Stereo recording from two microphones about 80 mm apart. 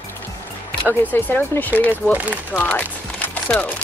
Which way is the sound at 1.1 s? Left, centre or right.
Left.